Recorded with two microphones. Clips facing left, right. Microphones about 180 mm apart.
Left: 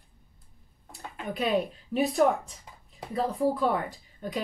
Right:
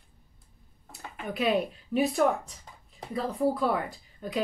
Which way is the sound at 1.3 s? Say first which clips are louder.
Even; centre (ahead or behind).